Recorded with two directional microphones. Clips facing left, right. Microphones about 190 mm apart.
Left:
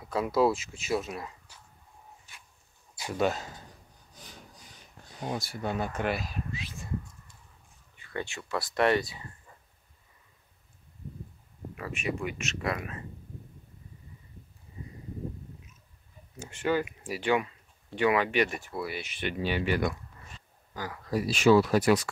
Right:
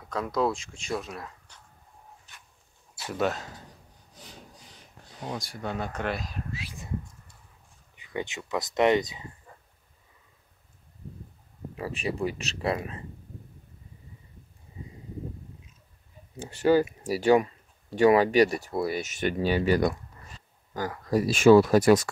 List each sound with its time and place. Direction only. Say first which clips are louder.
0.1 s speech: left 2 dB; 5° left (ahead or behind)
3.2 s speech: even; centre (ahead or behind)
5.2 s speech: left 1 dB; 5° left (ahead or behind)
6.5 s a sound: right 1 dB; 10° right (ahead or behind)
7.9 s speech: right 3 dB; 15° right (ahead or behind)
11.7 s speech: right 2 dB; 30° right (ahead or behind)
16.3 s speech: right 7 dB; 35° right (ahead or behind)